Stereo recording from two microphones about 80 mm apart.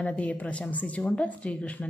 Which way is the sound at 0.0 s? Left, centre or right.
Centre.